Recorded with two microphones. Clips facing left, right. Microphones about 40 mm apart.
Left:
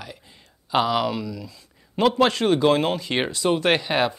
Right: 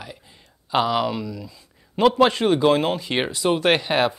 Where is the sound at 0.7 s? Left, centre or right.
Centre.